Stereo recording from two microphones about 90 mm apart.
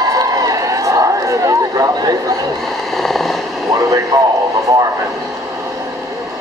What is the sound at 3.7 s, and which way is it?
Speech, 40° right (ahead or behind).